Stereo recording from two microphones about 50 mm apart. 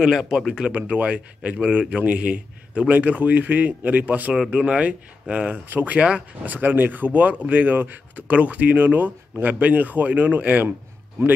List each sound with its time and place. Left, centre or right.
0.0 s speech: centre
0.7 s a man's voice: right
4.5 s a man's voice: centre
5.5 s speech: right
5.9 s speech: centre
6.4 s speech: right